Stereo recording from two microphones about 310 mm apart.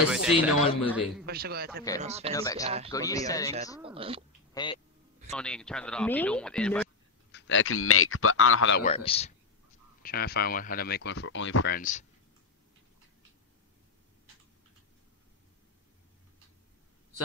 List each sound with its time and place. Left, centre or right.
0.1 s speech: centre
1.2 s a man's voice: right
2.3 s speech: centre
2.6 s a man's voice: centre
2.9 s speech: centre
3.8 s speech: centre
4.6 s speech: centre
5.3 s speech: centre
7.3 s speech: left
8.8 s speech: centre
10.0 s speech: left